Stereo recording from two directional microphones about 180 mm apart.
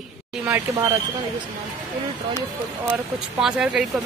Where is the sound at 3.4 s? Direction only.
5° right (ahead or behind).